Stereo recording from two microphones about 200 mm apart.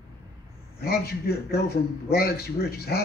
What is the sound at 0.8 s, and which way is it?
A man's voice, 50° left (ahead or behind).